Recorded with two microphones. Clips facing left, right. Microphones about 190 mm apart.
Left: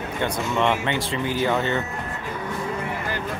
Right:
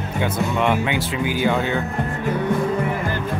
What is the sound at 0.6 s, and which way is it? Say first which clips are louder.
Speech: right 1 dB; 5° right (ahead or behind).